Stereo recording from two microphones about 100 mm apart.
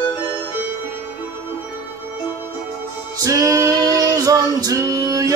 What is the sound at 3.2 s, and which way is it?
Male singing, 35° right (ahead or behind).